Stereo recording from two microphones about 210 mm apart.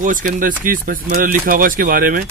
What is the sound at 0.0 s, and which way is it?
Speech, 40° right (ahead or behind).